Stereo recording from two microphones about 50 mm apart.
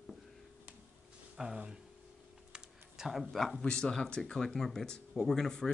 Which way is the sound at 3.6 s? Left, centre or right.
Centre.